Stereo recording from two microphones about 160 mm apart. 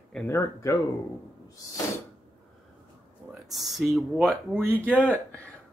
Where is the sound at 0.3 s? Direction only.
20° left (ahead or behind).